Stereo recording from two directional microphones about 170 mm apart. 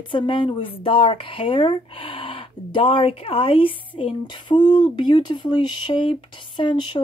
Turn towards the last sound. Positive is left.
turn(degrees=30)  # may be behind; listen again after turning